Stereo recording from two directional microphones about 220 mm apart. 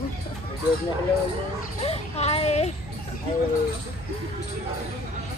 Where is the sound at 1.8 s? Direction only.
30° left (ahead or behind).